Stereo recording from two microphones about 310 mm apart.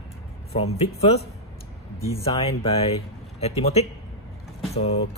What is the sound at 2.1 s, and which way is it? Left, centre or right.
Speech, centre.